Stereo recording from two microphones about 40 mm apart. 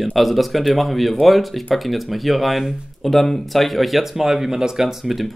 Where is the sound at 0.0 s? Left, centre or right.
Centre.